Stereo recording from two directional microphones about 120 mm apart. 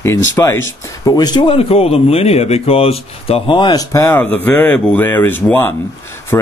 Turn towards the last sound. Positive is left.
turn(degrees=20)  # may be behind; listen again after turning